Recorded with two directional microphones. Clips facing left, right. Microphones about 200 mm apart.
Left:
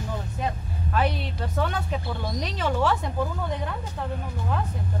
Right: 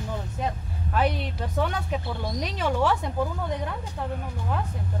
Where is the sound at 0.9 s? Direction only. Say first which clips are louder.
Right 1 dB; 15° right (ahead or behind).